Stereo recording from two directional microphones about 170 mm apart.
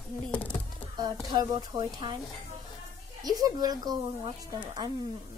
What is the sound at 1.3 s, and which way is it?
Speech, 25° right (ahead or behind).